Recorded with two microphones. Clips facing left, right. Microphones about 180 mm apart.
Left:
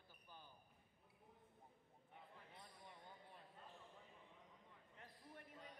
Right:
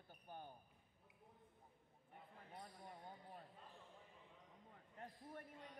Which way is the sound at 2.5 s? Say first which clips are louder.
Right 9 dB; 45° right (ahead or behind).